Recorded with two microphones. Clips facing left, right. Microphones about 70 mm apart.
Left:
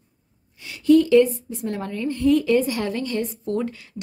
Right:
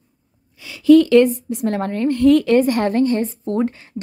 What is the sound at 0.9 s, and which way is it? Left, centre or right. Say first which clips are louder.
A woman's voice: right 4 dB; right.